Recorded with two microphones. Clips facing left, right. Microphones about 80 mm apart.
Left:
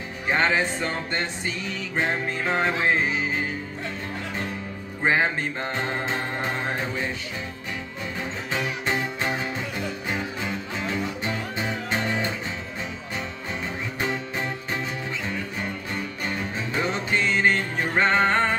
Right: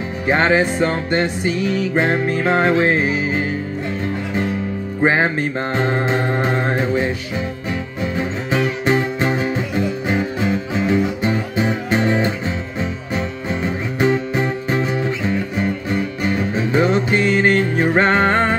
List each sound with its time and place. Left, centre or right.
0.3 s mantra: right
2.4 s music: right
3.0 s music: centre
5.0 s music: right
5.8 s mantra: right
10.1 s music: centre
16.5 s music: right
16.9 s music: centre
17.4 s music: right